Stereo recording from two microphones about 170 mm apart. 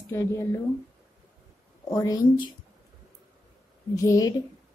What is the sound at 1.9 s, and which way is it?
Speech, 20° left (ahead or behind).